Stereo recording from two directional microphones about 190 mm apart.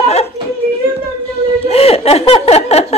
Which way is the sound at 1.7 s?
30° left (ahead or behind).